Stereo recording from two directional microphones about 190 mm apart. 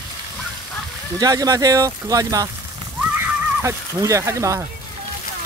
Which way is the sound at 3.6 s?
15° right (ahead or behind).